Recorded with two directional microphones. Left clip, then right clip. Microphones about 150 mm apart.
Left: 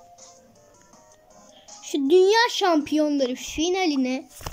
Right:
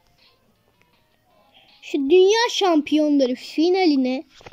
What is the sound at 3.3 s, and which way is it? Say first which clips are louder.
Speech: right 5 dB; 30° right (ahead or behind).